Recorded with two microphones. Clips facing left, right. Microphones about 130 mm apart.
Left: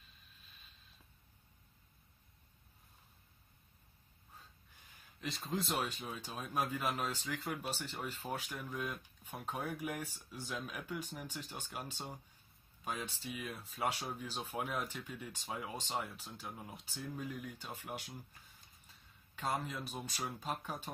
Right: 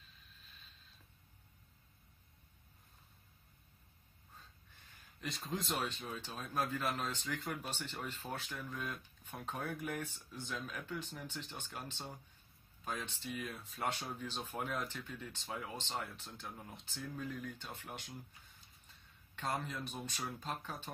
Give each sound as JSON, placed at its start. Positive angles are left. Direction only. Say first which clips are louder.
{"t": 5.2, "sound": "speech", "louder": "left 2 dB", "side_deg": 0}
{"t": 19.3, "sound": "speech", "louder": "left 1 dB", "side_deg": 5}